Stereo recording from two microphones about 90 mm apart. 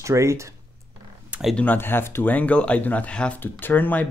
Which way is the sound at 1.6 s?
20° left (ahead or behind).